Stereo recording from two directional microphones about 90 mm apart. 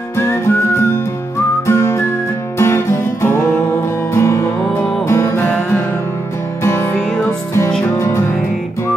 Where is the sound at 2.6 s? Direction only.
30° left (ahead or behind).